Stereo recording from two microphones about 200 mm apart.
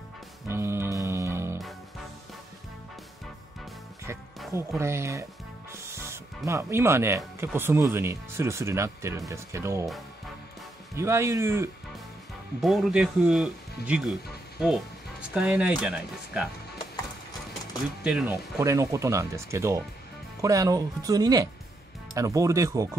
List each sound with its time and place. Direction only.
0.5 s music: 15° right (ahead or behind)
4.5 s speech: 15° right (ahead or behind)
11.0 s speech: 15° right (ahead or behind)
12.6 s speech: centre (ahead or behind)
15.3 s speech: 5° right (ahead or behind)
18.0 s speech: 5° right (ahead or behind)